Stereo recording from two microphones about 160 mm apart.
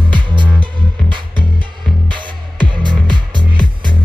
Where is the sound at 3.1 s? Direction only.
30° right (ahead or behind).